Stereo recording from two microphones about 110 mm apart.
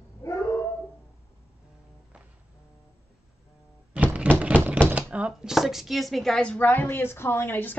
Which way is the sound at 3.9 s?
15° right (ahead or behind).